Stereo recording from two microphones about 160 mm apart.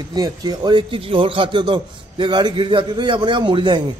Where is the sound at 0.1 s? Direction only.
25° right (ahead or behind).